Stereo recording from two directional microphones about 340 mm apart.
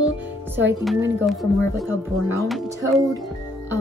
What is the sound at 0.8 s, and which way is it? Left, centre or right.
Speech, centre.